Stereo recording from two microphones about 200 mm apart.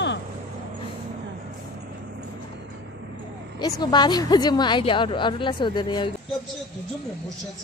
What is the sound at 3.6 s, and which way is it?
A woman's voice, 20° left (ahead or behind).